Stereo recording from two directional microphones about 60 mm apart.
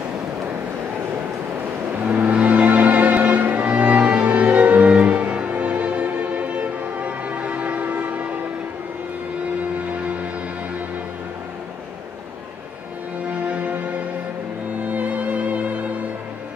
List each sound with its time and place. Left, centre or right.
2.0 s music: right
9.9 s music: right
13.3 s music: right